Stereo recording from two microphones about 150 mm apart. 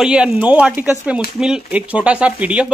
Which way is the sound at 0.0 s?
5° right (ahead or behind).